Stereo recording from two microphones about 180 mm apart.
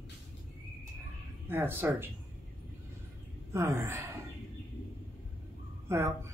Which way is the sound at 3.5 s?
15° right (ahead or behind).